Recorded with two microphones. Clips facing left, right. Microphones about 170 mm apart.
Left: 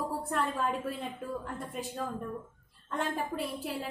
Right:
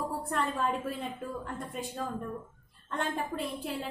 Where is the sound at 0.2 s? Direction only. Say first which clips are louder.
Right 1 dB; centre (ahead or behind).